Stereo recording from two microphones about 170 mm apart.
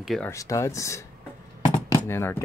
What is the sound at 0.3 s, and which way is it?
Speech, 20° left (ahead or behind).